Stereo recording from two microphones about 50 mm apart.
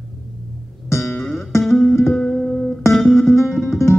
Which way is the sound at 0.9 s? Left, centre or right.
Left.